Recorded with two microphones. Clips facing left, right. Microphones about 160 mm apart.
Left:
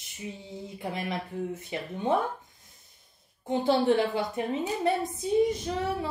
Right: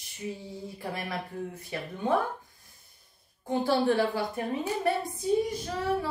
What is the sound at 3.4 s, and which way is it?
A woman's voice, 20° left (ahead or behind).